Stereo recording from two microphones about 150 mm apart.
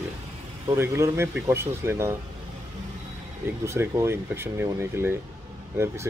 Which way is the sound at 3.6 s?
20° right (ahead or behind).